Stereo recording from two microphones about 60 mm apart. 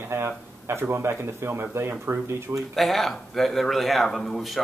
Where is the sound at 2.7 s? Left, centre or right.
Centre.